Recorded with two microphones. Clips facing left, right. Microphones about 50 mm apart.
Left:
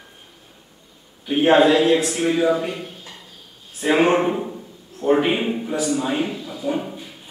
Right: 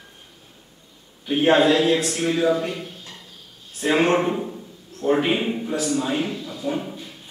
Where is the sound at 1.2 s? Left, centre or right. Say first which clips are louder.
Left 2 dB; centre.